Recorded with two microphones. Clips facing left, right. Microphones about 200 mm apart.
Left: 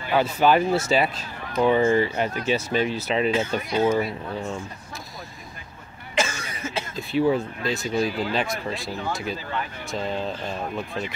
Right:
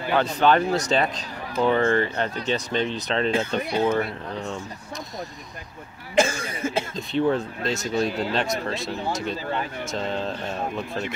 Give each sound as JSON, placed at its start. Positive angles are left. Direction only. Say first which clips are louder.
{"t": 0.1, "sound": "speech", "louder": "left 1 dB", "side_deg": 10}
{"t": 6.1, "sound": "cough", "louder": "right 5 dB", "side_deg": -50}
{"t": 7.0, "sound": "speech", "louder": "left 2 dB", "side_deg": 5}
{"t": 8.7, "sound": "speech", "louder": "right 2 dB", "side_deg": -20}
{"t": 9.9, "sound": "speech", "louder": "left 1 dB", "side_deg": 0}